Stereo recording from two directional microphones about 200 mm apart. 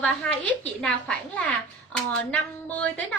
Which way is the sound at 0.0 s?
5° left (ahead or behind).